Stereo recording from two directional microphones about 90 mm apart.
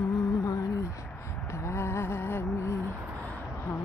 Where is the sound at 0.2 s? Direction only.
35° left (ahead or behind).